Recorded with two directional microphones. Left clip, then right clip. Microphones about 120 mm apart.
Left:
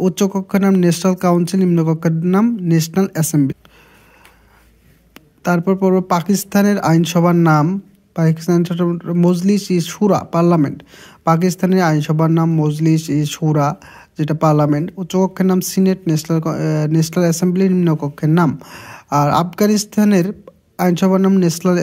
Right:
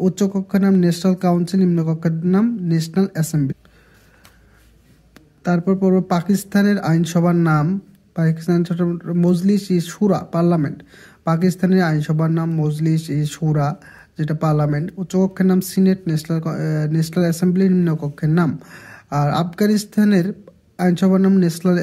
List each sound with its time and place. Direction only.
0.0 s speech: 50° left (ahead or behind)
5.1 s speech: 45° left (ahead or behind)